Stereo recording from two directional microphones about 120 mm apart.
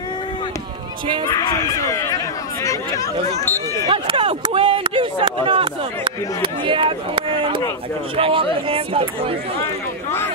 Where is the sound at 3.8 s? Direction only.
45° right (ahead or behind).